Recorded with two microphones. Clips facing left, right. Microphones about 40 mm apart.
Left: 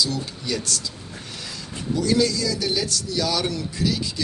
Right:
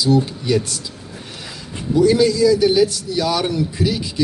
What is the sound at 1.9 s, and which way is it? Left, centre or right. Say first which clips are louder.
A man's voice: right 8 dB; right.